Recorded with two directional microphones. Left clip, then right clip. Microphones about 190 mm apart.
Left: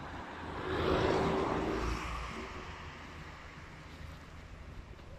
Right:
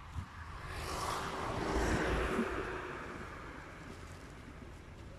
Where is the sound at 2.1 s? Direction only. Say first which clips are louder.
Right 7 dB; 60° right (ahead or behind).